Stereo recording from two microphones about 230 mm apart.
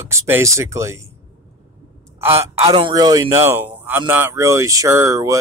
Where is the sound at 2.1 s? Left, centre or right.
Centre.